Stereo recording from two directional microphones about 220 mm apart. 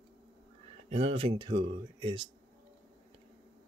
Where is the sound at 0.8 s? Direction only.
30° right (ahead or behind).